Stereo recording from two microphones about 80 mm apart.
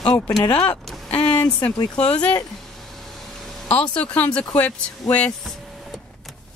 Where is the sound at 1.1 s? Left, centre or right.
Centre.